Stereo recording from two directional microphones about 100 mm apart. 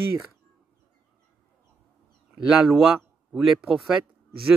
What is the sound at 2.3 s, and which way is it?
Speech, 5° right (ahead or behind).